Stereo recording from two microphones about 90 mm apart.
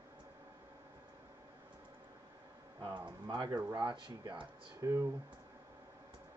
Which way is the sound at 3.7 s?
60° right (ahead or behind).